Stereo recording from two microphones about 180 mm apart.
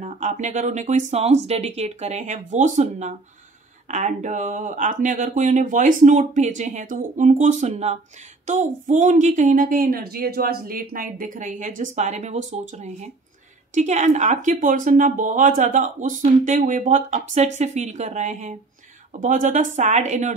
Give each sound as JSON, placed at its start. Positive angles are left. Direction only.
{"t": 0.0, "sound": "speech", "side_deg": -40}